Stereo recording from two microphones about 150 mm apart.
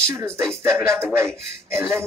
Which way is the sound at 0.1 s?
20° right (ahead or behind).